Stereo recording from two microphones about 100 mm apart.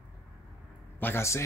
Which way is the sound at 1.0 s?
25° left (ahead or behind).